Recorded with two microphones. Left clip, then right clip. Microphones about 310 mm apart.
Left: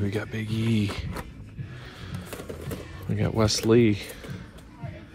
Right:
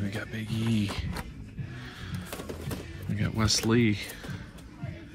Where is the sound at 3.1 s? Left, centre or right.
Centre.